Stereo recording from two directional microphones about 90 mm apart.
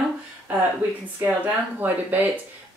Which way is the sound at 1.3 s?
20° right (ahead or behind).